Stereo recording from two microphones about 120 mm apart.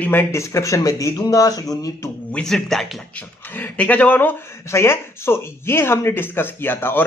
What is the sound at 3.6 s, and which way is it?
A man's voice, 15° left (ahead or behind).